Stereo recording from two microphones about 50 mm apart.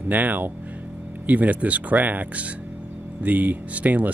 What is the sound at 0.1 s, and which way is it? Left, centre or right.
Speech, right.